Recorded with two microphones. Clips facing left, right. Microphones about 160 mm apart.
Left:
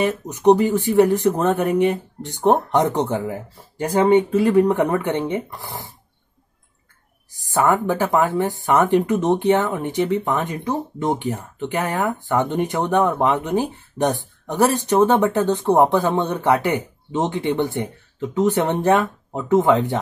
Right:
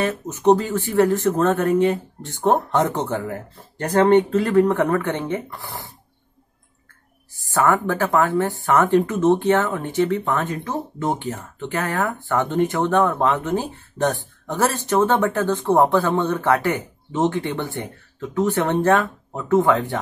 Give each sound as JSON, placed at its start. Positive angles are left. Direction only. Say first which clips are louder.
{"t": 0.0, "sound": "speech", "louder": "left 2 dB", "side_deg": 15}
{"t": 7.3, "sound": "speech", "louder": "left 1 dB", "side_deg": 15}